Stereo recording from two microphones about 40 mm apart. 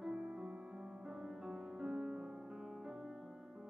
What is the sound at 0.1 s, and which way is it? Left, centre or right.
Music, right.